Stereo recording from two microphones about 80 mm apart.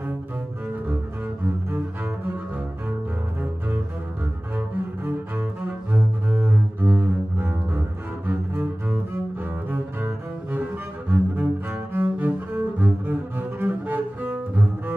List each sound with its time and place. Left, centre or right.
4.6 s cello: right